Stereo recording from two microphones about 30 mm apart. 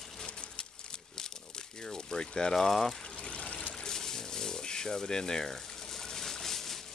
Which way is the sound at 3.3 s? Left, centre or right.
Left.